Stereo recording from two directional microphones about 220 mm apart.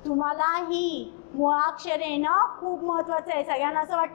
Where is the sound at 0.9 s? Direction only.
40° left (ahead or behind).